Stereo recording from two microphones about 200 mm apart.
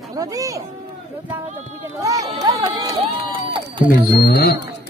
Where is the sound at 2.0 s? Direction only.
15° right (ahead or behind).